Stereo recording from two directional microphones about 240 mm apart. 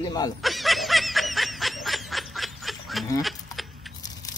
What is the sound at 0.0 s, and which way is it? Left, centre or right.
Speech, centre.